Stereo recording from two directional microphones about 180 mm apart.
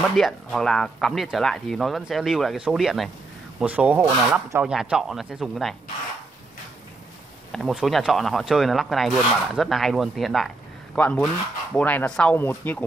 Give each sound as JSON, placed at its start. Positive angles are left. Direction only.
{"t": 0.1, "sound": "speech", "side_deg": 0}
{"t": 7.5, "sound": "speech", "side_deg": 0}